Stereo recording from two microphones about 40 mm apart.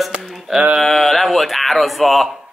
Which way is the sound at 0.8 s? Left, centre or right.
Centre.